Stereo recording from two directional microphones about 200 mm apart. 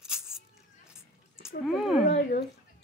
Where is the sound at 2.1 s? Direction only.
55° left (ahead or behind).